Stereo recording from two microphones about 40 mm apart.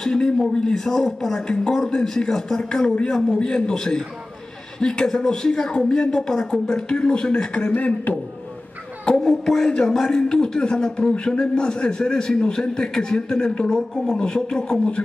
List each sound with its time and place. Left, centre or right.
0.0 s speech: centre
7.7 s speech: left
9.0 s a child's voice: centre